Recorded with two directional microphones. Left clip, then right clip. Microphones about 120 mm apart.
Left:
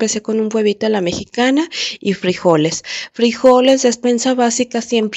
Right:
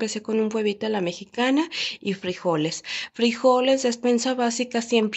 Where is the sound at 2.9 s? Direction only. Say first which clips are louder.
Left 4 dB; 40° left (ahead or behind).